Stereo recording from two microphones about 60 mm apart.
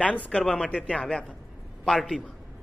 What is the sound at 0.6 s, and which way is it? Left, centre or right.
A woman's voice, centre.